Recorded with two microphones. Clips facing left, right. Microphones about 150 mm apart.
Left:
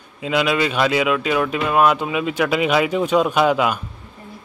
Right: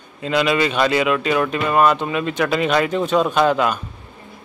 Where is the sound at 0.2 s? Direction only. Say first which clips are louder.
Right 1 dB; 5° left (ahead or behind).